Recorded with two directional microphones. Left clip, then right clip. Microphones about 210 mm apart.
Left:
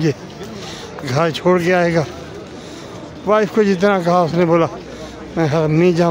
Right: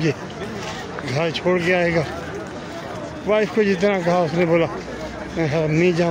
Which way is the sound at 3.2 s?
35° left (ahead or behind).